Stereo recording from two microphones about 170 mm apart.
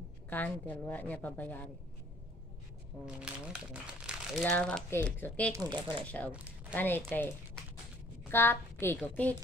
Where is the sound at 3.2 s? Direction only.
5° right (ahead or behind).